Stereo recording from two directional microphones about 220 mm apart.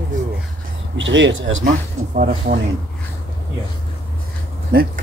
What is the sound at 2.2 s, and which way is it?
Speech, 40° right (ahead or behind).